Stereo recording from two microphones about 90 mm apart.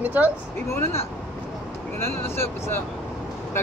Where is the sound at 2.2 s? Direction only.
25° left (ahead or behind).